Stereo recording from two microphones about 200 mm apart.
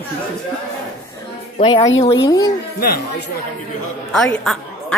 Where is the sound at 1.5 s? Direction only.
25° left (ahead or behind).